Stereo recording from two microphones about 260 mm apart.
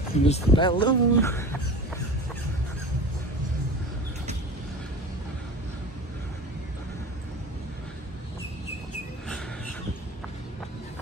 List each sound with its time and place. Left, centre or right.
0.2 s speech: left